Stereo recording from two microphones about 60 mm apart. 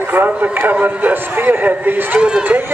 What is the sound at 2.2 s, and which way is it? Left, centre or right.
Speech, centre.